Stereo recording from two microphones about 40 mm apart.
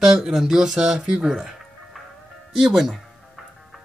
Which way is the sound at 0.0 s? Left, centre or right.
Centre.